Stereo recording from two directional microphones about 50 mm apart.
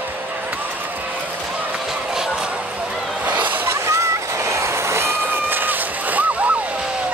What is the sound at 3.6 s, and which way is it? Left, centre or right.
Vehicle, right.